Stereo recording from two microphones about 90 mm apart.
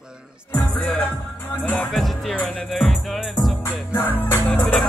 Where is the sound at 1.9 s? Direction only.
Centre (ahead or behind).